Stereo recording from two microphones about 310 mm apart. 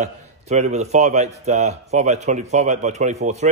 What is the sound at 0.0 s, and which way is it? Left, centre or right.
A man's voice, right.